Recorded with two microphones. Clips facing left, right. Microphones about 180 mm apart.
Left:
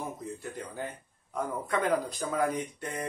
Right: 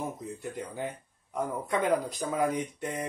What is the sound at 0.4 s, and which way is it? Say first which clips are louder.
Speech: right 2 dB; 15° right (ahead or behind).